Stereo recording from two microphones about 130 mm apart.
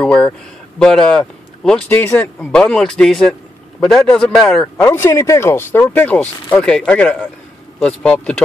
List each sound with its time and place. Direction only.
0.0 s speech: 5° left (ahead or behind)
1.9 s speech: 15° left (ahead or behind)
2.5 s a man's voice: 5° left (ahead or behind)
4.8 s speech: 20° left (ahead or behind)